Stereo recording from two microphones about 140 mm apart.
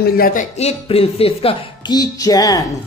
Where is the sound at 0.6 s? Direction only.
45° left (ahead or behind).